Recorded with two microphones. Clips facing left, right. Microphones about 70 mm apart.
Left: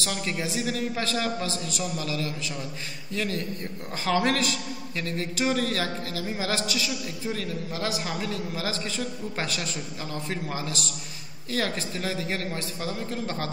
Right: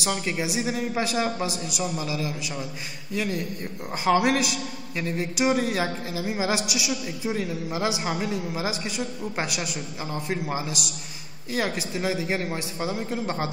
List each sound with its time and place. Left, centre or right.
0.0 s a man's voice: centre